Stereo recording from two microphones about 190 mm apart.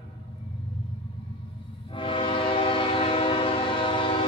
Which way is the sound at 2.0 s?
30° left (ahead or behind).